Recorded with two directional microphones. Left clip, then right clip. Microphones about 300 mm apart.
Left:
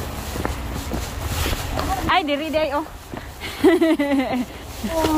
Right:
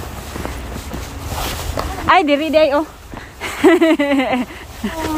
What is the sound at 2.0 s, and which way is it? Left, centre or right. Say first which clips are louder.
A woman's voice: right 9 dB; centre.